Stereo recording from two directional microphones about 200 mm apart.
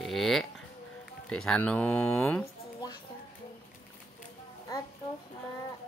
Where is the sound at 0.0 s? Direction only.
Centre (ahead or behind).